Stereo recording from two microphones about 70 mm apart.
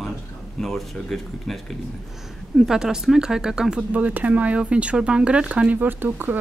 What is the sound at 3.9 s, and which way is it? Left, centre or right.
Speech, right.